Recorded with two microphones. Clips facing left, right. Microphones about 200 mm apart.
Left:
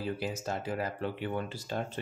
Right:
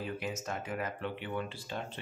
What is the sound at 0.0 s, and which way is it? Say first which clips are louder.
Speech: left 3 dB; 30° left (ahead or behind).